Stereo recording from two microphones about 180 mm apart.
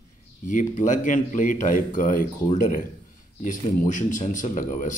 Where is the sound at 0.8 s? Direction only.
45° left (ahead or behind).